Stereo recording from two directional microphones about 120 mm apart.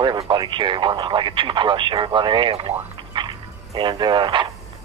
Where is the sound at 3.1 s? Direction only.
40° right (ahead or behind).